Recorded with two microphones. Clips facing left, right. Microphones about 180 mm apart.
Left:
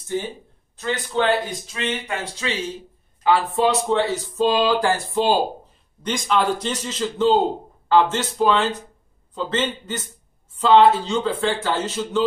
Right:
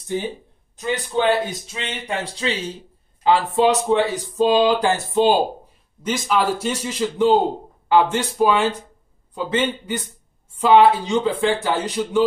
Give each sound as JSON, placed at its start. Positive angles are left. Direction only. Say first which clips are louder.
{"t": 0.0, "sound": "speech", "louder": "right 1 dB", "side_deg": -15}
{"t": 3.3, "sound": "speech", "louder": "right 2 dB", "side_deg": -20}
{"t": 6.0, "sound": "speech", "louder": "right 1 dB", "side_deg": -5}